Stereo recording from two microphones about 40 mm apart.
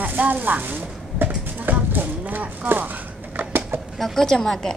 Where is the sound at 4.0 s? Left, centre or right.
Centre.